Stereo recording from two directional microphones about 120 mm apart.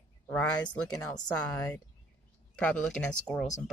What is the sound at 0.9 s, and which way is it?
Speech, 30° left (ahead or behind).